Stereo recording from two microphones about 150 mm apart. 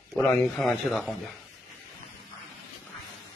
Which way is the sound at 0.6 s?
Centre (ahead or behind).